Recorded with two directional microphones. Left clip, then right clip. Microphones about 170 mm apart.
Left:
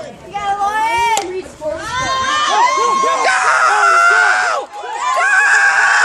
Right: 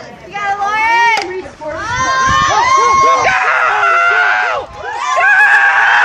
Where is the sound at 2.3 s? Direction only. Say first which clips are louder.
Right 3 dB; 65° left (ahead or behind).